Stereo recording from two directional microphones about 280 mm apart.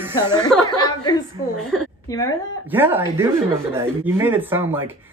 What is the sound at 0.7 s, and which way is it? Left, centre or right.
Speech, centre.